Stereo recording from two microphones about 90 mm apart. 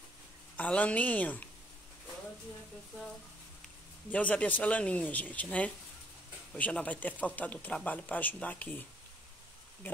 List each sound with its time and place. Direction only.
0.6 s speech: 15° left (ahead or behind)
4.1 s speech: 15° left (ahead or behind)